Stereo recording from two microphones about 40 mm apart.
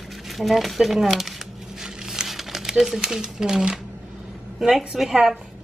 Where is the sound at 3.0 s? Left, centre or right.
Centre.